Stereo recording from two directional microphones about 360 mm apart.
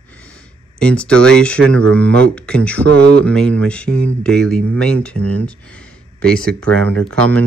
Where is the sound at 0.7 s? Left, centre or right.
Centre.